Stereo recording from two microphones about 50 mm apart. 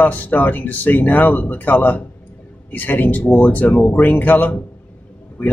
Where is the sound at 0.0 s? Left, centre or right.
Left.